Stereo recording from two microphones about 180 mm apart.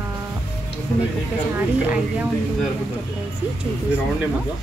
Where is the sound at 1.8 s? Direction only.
10° right (ahead or behind).